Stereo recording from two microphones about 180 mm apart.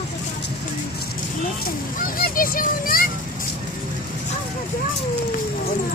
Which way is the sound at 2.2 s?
50° left (ahead or behind).